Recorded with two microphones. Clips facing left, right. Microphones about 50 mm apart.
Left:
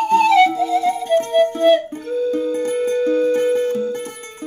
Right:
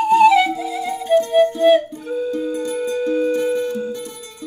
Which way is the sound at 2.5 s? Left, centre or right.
Left.